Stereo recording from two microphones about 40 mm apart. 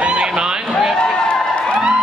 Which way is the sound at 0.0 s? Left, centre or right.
Right.